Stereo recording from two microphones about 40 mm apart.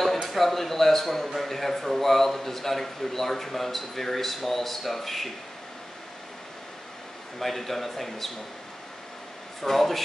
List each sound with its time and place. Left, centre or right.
0.2 s a man's voice: centre
7.3 s a man's voice: centre
9.6 s a man's voice: centre